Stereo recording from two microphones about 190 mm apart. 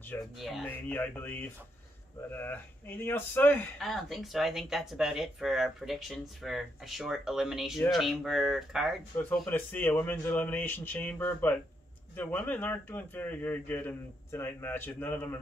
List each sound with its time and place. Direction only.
0.1 s speech: centre (ahead or behind)
9.1 s speech: 10° left (ahead or behind)